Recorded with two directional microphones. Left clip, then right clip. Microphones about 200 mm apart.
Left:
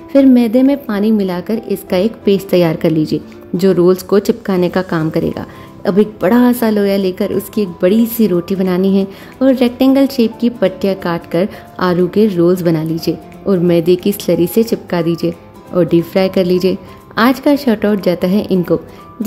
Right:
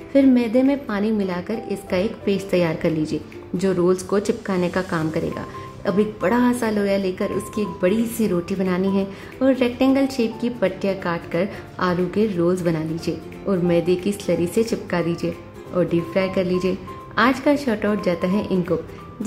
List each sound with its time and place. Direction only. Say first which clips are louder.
0.1 s a woman's voice: left 7 dB; 40° left (ahead or behind)